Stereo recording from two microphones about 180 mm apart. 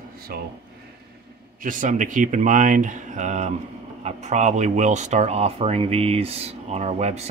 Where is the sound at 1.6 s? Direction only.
45° right (ahead or behind).